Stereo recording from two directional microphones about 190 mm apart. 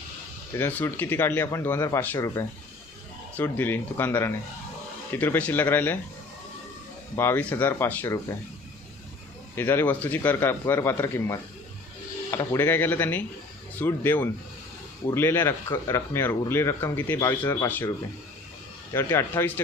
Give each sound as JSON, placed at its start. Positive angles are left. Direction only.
{"t": 0.6, "sound": "speech", "side_deg": 10}
{"t": 7.2, "sound": "speech", "side_deg": 10}
{"t": 9.6, "sound": "speech", "side_deg": 10}
{"t": 18.9, "sound": "speech", "side_deg": 15}